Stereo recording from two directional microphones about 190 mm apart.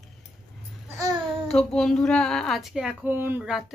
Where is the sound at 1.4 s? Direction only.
5° left (ahead or behind).